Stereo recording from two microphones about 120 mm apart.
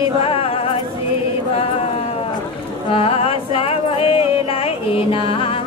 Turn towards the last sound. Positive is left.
turn(degrees=50)  # may be behind; listen again after turning